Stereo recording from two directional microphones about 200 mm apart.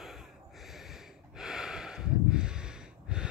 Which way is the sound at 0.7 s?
Centre (ahead or behind).